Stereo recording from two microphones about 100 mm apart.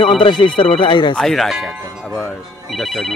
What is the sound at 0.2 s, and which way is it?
Speech, 55° left (ahead or behind).